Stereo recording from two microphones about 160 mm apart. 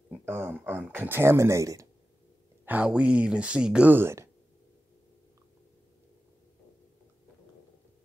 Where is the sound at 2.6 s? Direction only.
10° right (ahead or behind).